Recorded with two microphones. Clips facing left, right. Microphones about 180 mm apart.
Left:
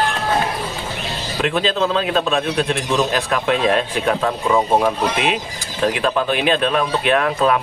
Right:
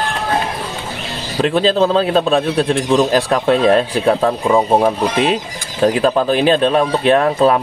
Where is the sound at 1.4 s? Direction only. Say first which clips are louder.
Right 6 dB; 35° right (ahead or behind).